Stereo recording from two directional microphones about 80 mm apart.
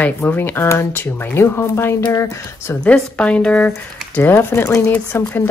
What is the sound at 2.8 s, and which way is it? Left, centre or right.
Speech, centre.